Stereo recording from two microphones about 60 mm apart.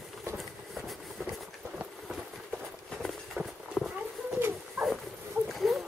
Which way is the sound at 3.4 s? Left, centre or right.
Right.